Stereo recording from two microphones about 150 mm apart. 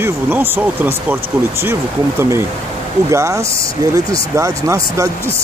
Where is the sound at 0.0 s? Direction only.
15° right (ahead or behind).